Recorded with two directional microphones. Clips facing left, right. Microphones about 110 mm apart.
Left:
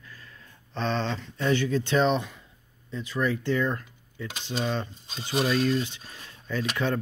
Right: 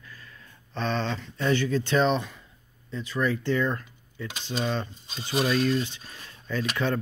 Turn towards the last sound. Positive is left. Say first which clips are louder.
# even
turn(degrees=10)  # may be behind; listen again after turning